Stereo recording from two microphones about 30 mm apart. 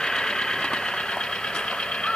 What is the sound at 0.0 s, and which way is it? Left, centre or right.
Vehicle, left.